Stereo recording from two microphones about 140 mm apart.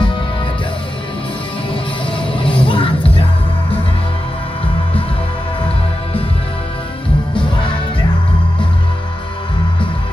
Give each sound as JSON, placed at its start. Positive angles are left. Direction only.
{"t": 1.7, "sound": "music", "side_deg": 40}